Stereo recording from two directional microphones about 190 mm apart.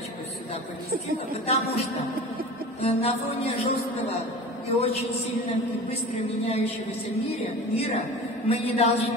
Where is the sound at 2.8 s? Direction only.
35° left (ahead or behind).